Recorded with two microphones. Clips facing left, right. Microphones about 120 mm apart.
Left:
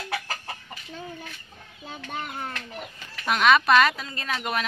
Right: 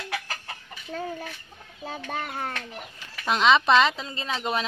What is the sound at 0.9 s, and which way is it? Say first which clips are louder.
Chicken: right 7 dB; 45° right (ahead or behind).